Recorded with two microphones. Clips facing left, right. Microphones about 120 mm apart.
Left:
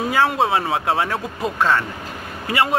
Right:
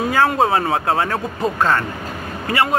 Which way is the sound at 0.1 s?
5° left (ahead or behind).